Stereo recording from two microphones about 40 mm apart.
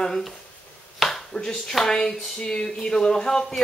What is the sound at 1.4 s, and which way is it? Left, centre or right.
Speech, centre.